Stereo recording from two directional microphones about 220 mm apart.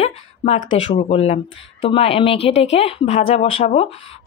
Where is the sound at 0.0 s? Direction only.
30° left (ahead or behind).